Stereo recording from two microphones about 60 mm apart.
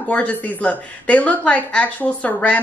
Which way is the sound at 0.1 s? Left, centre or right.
Left.